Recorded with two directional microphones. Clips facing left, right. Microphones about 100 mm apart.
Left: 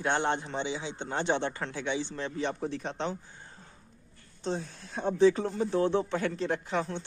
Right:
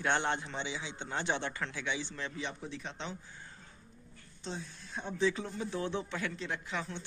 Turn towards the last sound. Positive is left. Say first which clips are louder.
# left 8 dB
turn(degrees=45)  # may be behind; listen again after turning